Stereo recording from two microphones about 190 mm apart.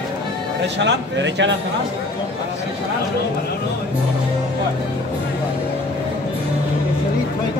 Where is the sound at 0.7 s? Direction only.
70° right (ahead or behind).